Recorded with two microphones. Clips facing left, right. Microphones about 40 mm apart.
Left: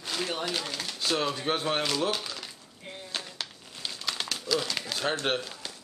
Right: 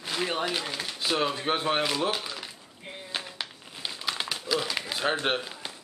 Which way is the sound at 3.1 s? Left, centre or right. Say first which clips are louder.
Right 2 dB; centre.